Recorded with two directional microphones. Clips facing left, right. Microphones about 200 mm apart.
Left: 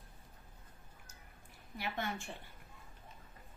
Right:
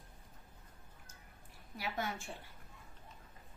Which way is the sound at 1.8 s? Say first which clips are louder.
Even; 5° right (ahead or behind).